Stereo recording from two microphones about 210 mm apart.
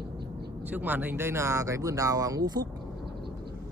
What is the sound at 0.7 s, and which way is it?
Speech, 10° right (ahead or behind).